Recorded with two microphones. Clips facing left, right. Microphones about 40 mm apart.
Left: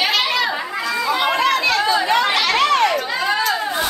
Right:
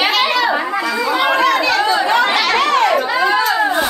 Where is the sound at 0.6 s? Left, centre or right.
Centre.